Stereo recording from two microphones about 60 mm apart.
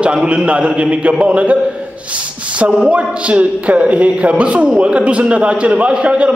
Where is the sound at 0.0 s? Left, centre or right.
Centre.